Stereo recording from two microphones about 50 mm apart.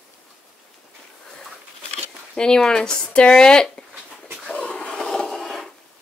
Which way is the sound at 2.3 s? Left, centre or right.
Centre.